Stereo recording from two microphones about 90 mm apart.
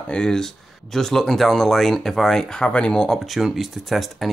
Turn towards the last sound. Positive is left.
turn(degrees=0)  # may be behind; listen again after turning